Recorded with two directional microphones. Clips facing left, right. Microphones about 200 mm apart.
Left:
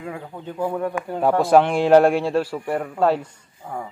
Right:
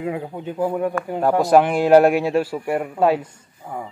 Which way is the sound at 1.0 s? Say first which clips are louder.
Left 2 dB; 10° right (ahead or behind).